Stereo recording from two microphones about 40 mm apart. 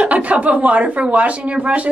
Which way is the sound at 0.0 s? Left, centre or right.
Right.